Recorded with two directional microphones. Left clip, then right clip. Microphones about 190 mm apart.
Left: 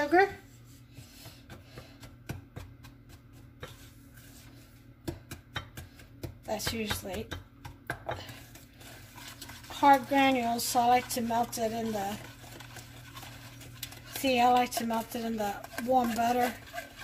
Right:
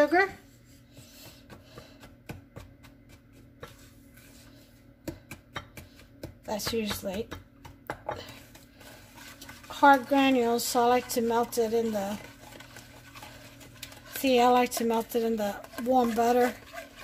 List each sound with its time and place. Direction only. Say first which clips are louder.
0.0 s a sound: right 2 dB; 50° right (ahead or behind)
6.4 s speech: right 3 dB; 45° right (ahead or behind)
9.8 s speech: right 2 dB; 50° right (ahead or behind)
14.2 s speech: right 2 dB; 50° right (ahead or behind)